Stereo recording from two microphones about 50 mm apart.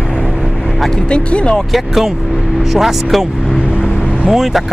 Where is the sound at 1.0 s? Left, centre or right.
Left.